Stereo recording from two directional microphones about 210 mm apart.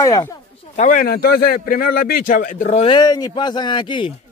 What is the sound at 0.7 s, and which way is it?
A man's voice, 40° left (ahead or behind).